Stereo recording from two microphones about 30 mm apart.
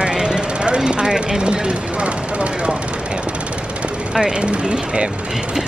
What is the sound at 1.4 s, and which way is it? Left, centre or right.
Speech, right.